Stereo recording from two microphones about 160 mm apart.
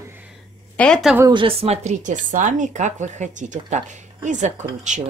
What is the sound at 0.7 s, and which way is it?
Speech, 5° left (ahead or behind).